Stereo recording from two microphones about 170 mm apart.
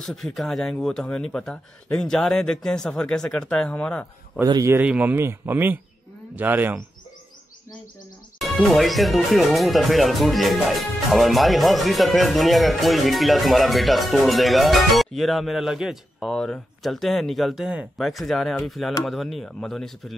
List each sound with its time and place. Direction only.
0.0 s speech: centre (ahead or behind)
4.4 s speech: 20° right (ahead or behind)
8.4 s speech: centre (ahead or behind)